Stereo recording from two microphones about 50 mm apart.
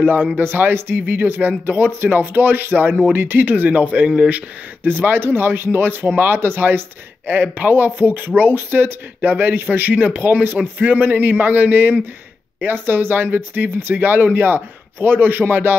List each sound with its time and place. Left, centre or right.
0.0 s speech: right
4.8 s speech: right